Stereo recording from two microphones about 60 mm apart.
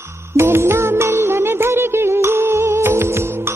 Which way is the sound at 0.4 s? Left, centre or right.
Right.